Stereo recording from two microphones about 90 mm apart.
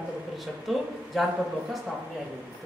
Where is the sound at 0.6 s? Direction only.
Centre (ahead or behind).